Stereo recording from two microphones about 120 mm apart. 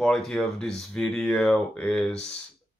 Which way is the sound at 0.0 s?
5° left (ahead or behind).